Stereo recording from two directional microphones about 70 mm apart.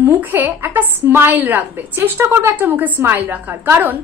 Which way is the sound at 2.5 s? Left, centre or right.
Right.